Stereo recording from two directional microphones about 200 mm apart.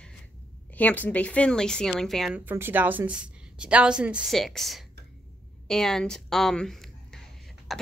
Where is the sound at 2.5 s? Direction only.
10° right (ahead or behind).